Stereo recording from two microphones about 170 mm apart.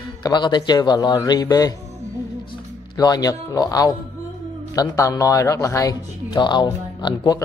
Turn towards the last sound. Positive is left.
turn(degrees=25)  # may be behind; listen again after turning